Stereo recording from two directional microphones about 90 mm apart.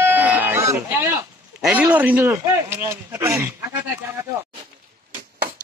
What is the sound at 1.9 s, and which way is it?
Speech, 20° right (ahead or behind).